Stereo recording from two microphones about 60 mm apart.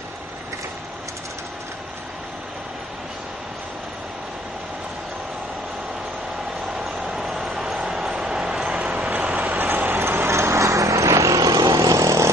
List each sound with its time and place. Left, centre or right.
6.8 s vehicle: centre
8.2 s train: centre
9.6 s vehicle: right